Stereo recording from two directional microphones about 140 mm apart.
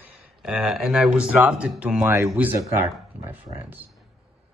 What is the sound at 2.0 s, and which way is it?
Speech, 15° right (ahead or behind).